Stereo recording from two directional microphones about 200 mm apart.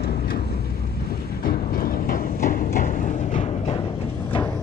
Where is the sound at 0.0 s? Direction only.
50° left (ahead or behind).